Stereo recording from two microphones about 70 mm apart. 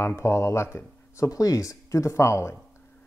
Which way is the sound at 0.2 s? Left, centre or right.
Left.